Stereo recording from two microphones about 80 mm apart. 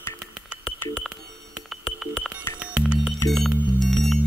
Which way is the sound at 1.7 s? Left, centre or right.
Centre.